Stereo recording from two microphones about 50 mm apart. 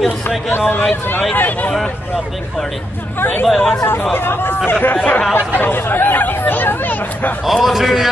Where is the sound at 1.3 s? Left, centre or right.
Left.